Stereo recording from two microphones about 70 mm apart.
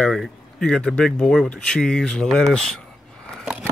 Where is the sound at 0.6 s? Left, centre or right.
Centre.